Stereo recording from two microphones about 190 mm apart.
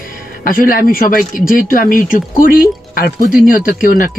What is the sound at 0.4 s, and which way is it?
A man's voice, 50° left (ahead or behind).